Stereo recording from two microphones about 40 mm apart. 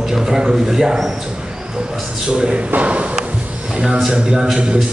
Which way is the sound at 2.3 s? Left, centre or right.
Right.